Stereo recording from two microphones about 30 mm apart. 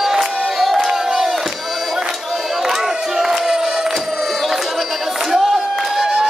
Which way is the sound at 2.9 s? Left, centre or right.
Right.